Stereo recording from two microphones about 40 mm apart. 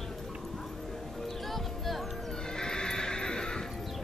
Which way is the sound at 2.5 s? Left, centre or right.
Centre.